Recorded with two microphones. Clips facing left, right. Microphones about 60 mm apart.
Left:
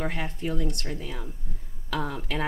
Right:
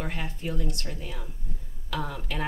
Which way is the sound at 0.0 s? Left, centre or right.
Left.